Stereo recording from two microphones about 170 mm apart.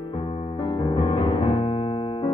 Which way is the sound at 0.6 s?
25° left (ahead or behind).